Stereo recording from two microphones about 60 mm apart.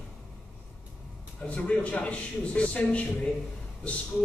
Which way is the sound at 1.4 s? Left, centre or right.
Left.